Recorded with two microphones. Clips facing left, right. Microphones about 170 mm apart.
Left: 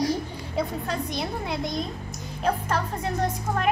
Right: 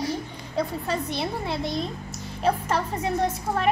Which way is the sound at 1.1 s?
Centre (ahead or behind).